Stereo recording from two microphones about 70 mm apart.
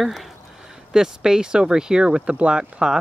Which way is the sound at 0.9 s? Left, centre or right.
Centre.